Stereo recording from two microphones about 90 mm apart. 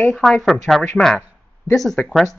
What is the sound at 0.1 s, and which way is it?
Speech, centre (ahead or behind).